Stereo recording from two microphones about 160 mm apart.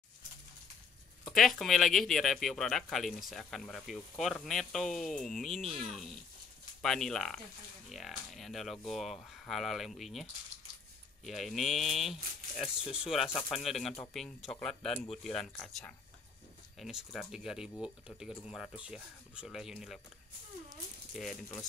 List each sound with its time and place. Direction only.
1.2 s speech: centre (ahead or behind)
11.2 s speech: centre (ahead or behind)
21.1 s speech: centre (ahead or behind)